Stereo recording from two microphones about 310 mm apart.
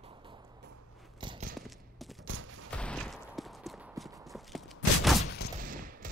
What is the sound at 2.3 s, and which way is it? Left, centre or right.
Fusillade, right.